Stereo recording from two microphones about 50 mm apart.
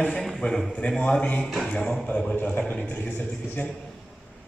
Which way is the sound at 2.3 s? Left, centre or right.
Left.